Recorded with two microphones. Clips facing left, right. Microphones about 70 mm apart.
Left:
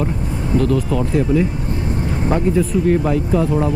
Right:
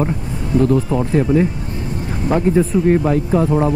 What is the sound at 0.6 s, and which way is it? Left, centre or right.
Speech, right.